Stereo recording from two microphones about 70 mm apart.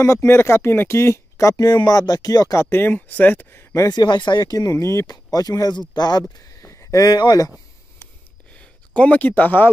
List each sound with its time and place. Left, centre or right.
0.0 s speech: left
2.7 s speech: left
3.9 s speech: left
5.0 s speech: left
5.9 s speech: left
6.6 s speech: left
8.5 s speech: centre